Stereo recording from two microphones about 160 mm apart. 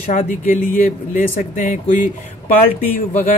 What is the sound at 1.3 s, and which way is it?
A woman's voice, 50° left (ahead or behind).